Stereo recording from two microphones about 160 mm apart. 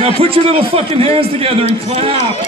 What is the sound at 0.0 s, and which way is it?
A man's voice, 35° right (ahead or behind).